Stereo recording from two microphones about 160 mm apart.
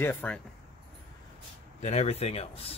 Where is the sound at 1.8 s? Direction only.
40° left (ahead or behind).